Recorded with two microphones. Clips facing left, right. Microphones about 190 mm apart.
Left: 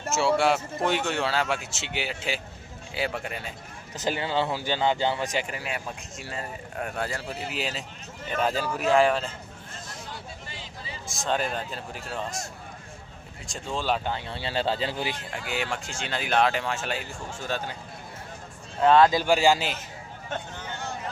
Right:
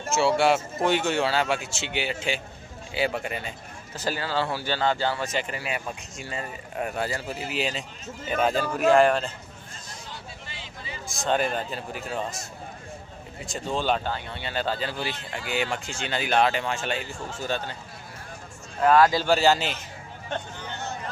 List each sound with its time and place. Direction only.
0.1 s a man's voice: centre (ahead or behind)
3.9 s speech: 20° left (ahead or behind)
5.6 s a man's voice: centre (ahead or behind)
10.5 s vehicle: 40° left (ahead or behind)
11.1 s a man's voice: centre (ahead or behind)
13.5 s a man's voice: centre (ahead or behind)
14.0 s speech: 20° left (ahead or behind)
15.3 s a man's voice: centre (ahead or behind)
18.8 s speech: 25° left (ahead or behind)